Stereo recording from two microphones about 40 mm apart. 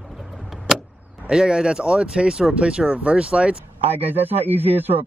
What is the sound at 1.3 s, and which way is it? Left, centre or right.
Speech, centre.